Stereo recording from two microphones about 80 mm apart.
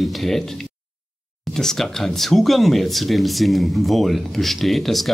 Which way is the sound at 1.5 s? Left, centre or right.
Centre.